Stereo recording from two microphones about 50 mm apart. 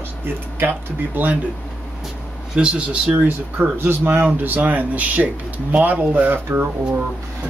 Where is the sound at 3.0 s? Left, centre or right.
Right.